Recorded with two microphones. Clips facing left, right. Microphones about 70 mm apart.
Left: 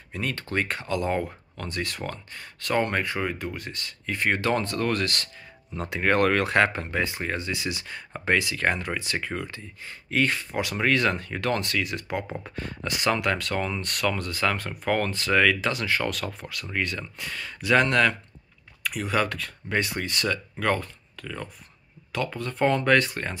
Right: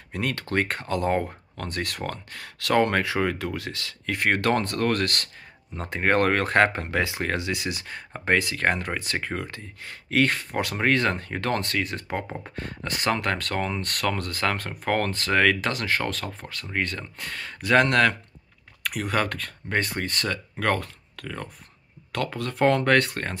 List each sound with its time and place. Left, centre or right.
0.1 s speech: right
5.8 s speech: right
6.9 s speech: right
7.6 s speech: right
20.6 s speech: right